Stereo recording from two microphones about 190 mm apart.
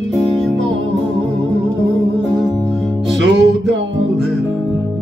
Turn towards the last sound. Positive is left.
turn(degrees=-70)  # may be behind; listen again after turning